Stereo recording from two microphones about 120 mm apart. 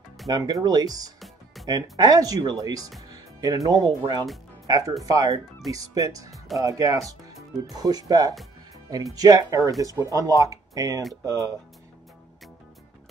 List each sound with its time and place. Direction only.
0.3 s speech: 30° right (ahead or behind)
1.2 s music: centre (ahead or behind)
1.7 s speech: 35° right (ahead or behind)